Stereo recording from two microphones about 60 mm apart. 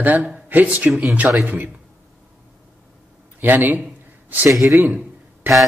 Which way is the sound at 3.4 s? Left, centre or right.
Right.